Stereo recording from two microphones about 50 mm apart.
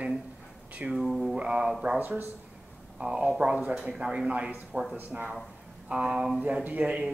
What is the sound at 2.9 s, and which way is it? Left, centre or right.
A man's voice, centre.